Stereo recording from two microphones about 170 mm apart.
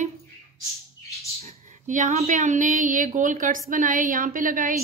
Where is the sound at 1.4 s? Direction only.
40° right (ahead or behind).